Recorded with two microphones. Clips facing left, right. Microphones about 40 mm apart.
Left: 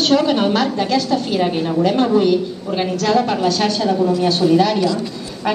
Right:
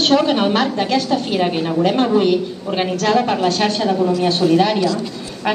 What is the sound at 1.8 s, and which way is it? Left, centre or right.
A woman's voice, right.